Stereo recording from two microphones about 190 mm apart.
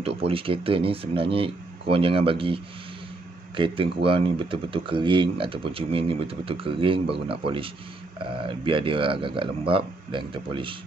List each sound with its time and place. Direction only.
0.0 s speech: 30° right (ahead or behind)